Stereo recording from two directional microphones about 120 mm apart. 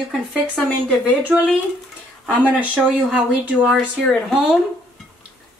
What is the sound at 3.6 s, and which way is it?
Speech, centre (ahead or behind).